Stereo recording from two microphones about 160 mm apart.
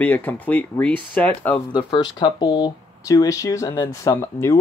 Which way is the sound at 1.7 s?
30° left (ahead or behind).